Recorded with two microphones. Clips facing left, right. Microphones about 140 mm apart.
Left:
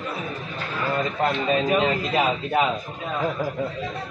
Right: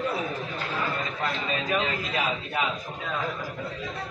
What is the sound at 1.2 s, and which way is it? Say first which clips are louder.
A man's voice: left 9 dB; 35° left (ahead or behind).